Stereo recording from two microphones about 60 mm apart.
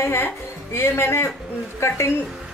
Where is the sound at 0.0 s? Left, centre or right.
Left.